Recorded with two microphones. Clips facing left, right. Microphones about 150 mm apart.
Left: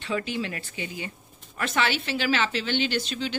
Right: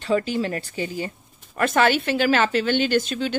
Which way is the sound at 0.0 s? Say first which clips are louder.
Right 7 dB; 40° right (ahead or behind).